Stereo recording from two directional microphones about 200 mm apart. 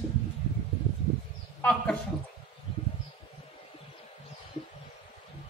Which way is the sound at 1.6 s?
5° left (ahead or behind).